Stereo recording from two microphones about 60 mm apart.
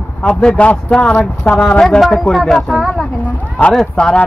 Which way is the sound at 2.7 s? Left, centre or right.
Centre.